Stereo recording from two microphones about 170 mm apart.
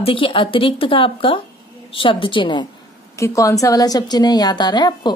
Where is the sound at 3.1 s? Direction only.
20° left (ahead or behind).